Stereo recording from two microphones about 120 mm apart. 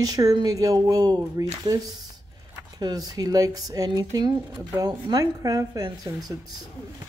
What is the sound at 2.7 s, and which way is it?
Speech, 35° right (ahead or behind).